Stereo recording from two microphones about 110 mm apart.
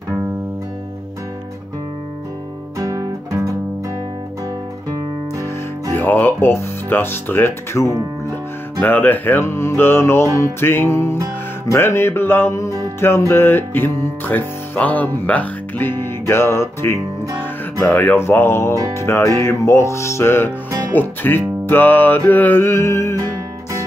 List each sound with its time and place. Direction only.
2.8 s music: 30° right (ahead or behind)
5.9 s speech: 20° left (ahead or behind)
8.8 s music: 15° left (ahead or behind)